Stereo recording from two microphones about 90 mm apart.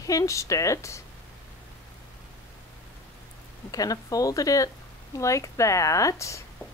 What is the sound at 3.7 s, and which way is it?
Speech, 40° left (ahead or behind).